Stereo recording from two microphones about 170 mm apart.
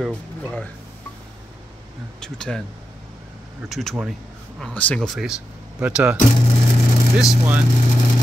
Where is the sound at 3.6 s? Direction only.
Centre (ahead or behind).